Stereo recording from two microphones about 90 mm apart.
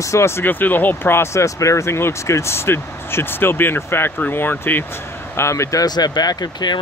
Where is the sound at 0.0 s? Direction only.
30° left (ahead or behind).